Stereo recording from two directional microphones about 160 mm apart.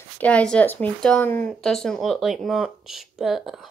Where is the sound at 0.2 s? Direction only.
5° left (ahead or behind).